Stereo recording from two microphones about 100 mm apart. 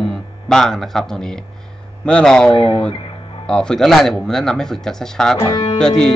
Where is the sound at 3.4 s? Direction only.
5° left (ahead or behind).